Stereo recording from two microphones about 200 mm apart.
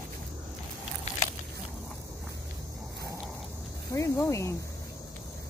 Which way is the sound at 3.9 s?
15° left (ahead or behind).